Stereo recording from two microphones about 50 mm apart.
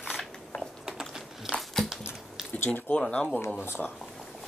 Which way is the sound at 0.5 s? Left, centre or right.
Left.